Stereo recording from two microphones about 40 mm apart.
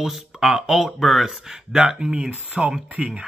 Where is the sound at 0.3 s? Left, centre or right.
Centre.